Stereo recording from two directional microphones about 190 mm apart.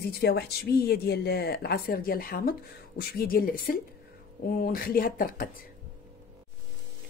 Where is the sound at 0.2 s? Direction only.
55° left (ahead or behind).